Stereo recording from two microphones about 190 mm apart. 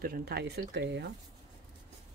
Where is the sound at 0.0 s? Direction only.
55° right (ahead or behind).